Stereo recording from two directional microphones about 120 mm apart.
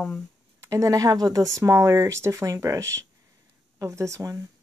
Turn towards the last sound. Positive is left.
turn(degrees=-25)  # may be behind; listen again after turning